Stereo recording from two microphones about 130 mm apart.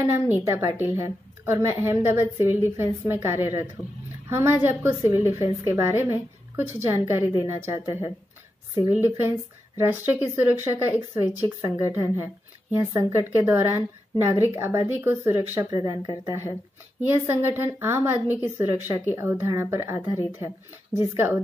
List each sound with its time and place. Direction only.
0.0 s a woman's voice: 15° right (ahead or behind)